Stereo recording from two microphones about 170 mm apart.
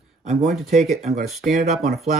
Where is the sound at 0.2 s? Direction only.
45° right (ahead or behind).